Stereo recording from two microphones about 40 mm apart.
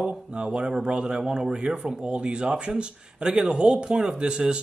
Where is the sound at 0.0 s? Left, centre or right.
Centre.